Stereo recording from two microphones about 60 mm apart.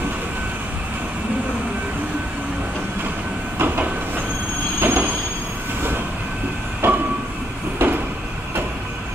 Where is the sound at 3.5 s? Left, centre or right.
Right.